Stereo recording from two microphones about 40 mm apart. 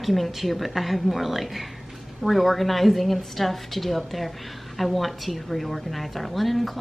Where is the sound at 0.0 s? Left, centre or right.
Centre.